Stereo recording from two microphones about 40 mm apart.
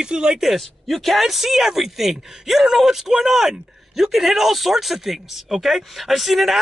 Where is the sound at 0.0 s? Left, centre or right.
Right.